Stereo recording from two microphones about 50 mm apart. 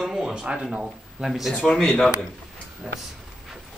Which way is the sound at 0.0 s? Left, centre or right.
Centre.